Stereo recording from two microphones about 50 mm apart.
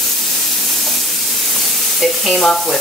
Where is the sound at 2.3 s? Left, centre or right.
Centre.